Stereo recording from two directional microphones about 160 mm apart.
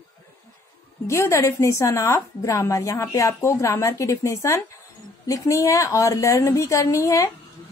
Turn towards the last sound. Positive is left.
turn(degrees=20)  # may be behind; listen again after turning